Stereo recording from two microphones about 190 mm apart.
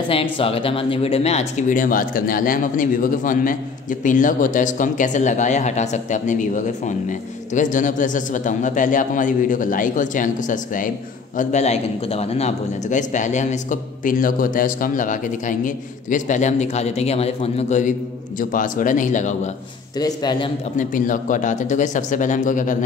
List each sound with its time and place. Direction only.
0.1 s a man's voice: 30° left (ahead or behind)
20.0 s a man's voice: 20° left (ahead or behind)
20.7 s a man's voice: 45° left (ahead or behind)